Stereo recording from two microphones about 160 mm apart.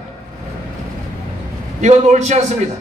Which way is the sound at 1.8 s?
45° right (ahead or behind).